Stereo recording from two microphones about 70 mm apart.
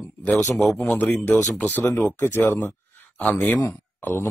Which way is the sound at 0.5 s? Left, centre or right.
Centre.